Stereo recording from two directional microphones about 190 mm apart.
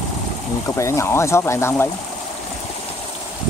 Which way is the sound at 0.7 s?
15° left (ahead or behind).